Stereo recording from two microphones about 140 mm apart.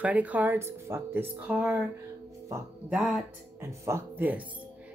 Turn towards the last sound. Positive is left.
turn(degrees=-10)  # may be behind; listen again after turning